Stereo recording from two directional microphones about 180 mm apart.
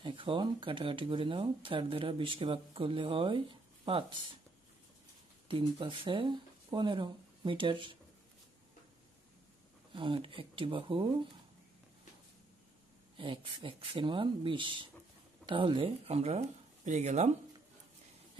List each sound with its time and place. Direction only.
0.0 s speech: 30° right (ahead or behind)
5.5 s speech: 30° right (ahead or behind)
9.9 s speech: 30° right (ahead or behind)
13.2 s speech: 30° right (ahead or behind)